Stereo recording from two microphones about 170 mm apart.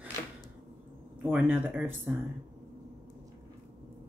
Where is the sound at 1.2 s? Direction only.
10° right (ahead or behind).